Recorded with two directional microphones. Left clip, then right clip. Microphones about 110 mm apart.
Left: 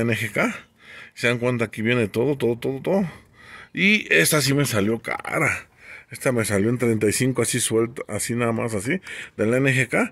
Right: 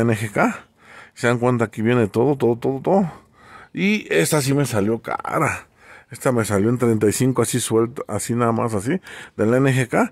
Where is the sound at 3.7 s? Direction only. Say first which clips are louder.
Left 2 dB; 30° right (ahead or behind).